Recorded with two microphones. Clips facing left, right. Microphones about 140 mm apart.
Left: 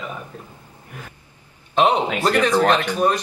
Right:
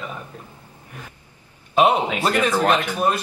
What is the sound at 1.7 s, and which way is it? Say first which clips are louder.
Speech: even; 10° right (ahead or behind).